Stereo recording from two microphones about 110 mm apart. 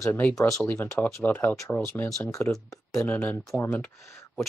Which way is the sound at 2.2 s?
30° left (ahead or behind).